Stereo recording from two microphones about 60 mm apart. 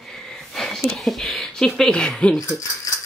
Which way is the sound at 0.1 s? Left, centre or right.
Centre.